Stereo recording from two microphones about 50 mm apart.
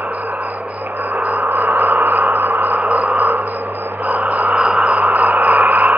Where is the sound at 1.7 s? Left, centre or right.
Right.